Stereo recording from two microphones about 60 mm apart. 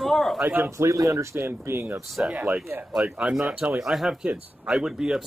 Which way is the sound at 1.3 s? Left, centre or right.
Right.